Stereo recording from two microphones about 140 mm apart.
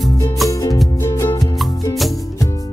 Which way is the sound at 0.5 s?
25° left (ahead or behind).